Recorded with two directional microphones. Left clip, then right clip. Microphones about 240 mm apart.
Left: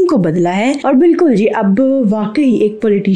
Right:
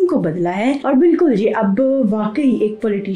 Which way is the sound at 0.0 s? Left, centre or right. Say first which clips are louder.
Left 4 dB; left.